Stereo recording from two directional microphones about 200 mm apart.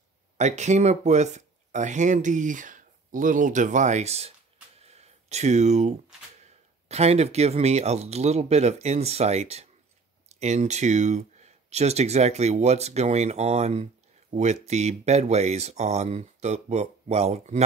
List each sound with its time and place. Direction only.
0.4 s speech: 35° right (ahead or behind)
4.7 s a sound: 30° right (ahead or behind)
6.9 s speech: 30° right (ahead or behind)